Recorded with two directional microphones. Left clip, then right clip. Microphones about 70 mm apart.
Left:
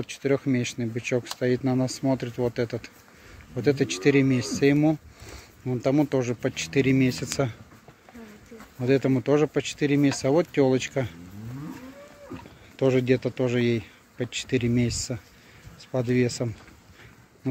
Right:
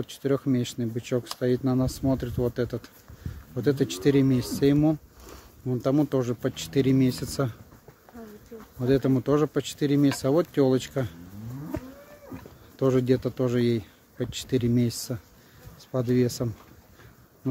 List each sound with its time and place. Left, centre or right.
0.0 s speech: centre
8.7 s speech: centre
12.7 s speech: centre